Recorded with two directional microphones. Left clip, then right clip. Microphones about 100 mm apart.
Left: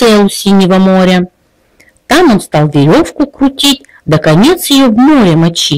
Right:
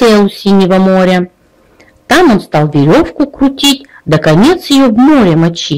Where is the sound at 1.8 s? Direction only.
20° left (ahead or behind).